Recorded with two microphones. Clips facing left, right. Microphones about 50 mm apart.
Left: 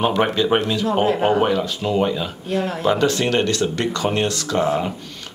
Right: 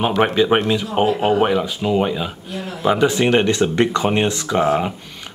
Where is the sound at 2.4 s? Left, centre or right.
Left.